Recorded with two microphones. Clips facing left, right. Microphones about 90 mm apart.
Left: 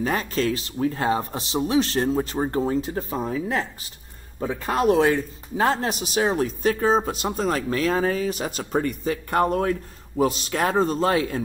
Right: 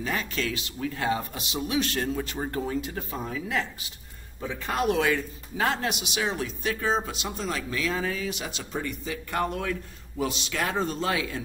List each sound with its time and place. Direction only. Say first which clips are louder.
0.0 s a man's voice: left 6 dB; 40° left (ahead or behind)